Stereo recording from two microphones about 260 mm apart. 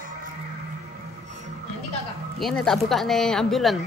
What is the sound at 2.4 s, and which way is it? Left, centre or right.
Speech, centre.